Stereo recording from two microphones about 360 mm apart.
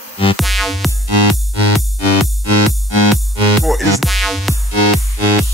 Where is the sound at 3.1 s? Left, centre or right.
Centre.